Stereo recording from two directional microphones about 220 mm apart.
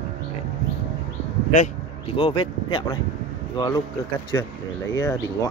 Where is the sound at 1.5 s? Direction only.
30° left (ahead or behind).